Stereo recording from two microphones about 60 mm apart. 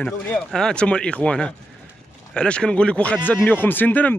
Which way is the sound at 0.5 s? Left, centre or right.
Centre.